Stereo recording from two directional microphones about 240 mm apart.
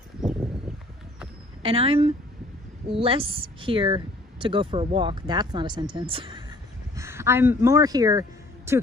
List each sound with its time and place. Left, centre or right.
1.6 s speech: right
7.0 s speech: centre